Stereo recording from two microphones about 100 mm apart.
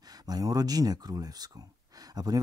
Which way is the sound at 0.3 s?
40° right (ahead or behind).